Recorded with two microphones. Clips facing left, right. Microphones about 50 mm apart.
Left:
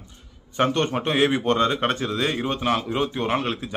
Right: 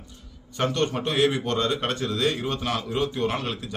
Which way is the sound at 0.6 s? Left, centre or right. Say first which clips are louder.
Left 3 dB; left.